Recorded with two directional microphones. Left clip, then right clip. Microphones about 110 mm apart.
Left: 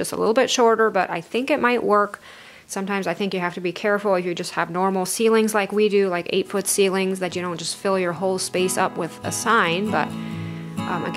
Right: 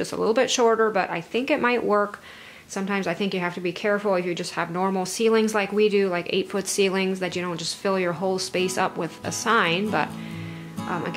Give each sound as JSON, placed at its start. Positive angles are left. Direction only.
{"t": 0.0, "sound": "a woman's voice", "side_deg": 35}